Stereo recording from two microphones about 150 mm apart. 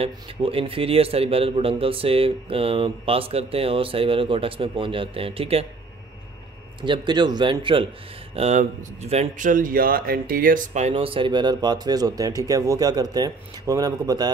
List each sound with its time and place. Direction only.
0.0 s speech: 40° right (ahead or behind)
6.8 s speech: 30° right (ahead or behind)
8.4 s speech: 45° right (ahead or behind); by 14.3 s 25° right (ahead or behind)